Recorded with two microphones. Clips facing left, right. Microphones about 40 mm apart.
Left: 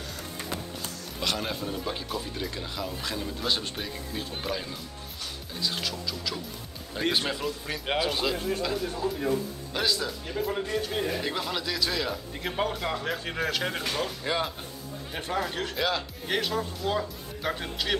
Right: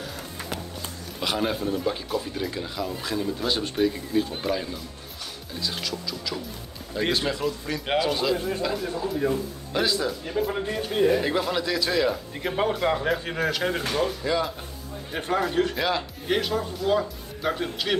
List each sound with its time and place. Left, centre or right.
1.2 s speech: centre
8.6 s speech: centre
14.2 s speech: left
15.4 s speech: centre